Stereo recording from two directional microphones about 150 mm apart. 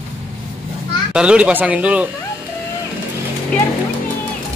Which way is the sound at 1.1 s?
5° right (ahead or behind).